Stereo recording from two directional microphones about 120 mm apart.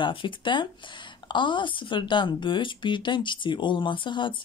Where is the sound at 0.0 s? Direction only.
45° left (ahead or behind).